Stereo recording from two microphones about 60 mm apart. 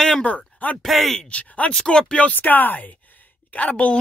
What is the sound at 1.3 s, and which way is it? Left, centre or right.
Speech, left.